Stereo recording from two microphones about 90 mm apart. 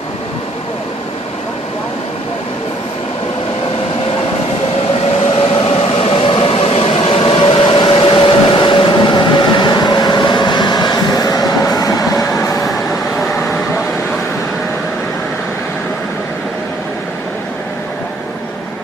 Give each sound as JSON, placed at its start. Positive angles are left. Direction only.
{"t": 5.4, "sound": "vehicle", "side_deg": 90}
{"t": 12.4, "sound": "train", "side_deg": 35}